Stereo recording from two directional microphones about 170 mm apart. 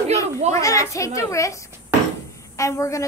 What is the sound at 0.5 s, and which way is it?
Speech, 20° left (ahead or behind).